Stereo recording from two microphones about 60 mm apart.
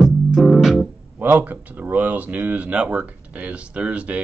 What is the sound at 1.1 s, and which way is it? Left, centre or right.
Speech, right.